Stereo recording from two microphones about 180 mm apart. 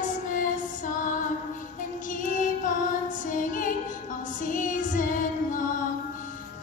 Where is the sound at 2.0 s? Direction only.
45° left (ahead or behind).